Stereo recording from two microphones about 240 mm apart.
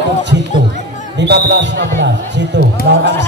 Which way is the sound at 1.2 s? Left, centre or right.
Right.